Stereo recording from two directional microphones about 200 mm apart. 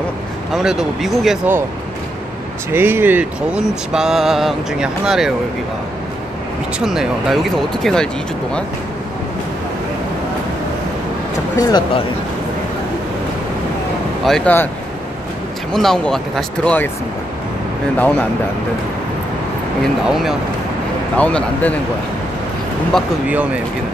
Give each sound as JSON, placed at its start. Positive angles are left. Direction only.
{"t": 0.5, "sound": "speech", "side_deg": 0}
{"t": 2.7, "sound": "speech", "side_deg": -10}
{"t": 6.8, "sound": "speech", "side_deg": 0}
{"t": 11.5, "sound": "speech", "side_deg": 20}
{"t": 14.2, "sound": "speech", "side_deg": 5}
{"t": 15.7, "sound": "speech", "side_deg": 0}
{"t": 20.1, "sound": "speech", "side_deg": 0}
{"t": 22.9, "sound": "speech", "side_deg": -5}